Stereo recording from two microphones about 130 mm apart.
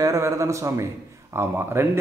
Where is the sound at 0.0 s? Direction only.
25° right (ahead or behind).